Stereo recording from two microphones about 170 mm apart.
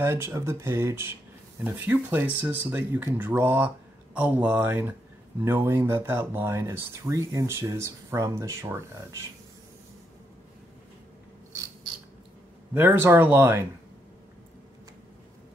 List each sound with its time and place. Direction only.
0.0 s speech: 15° right (ahead or behind)
12.7 s speech: 10° right (ahead or behind)